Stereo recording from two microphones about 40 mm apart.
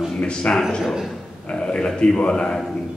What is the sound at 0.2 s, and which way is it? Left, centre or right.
A man's voice, left.